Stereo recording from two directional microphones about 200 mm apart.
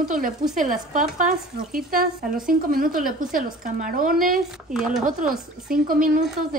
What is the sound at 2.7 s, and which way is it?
A woman's voice, 45° right (ahead or behind).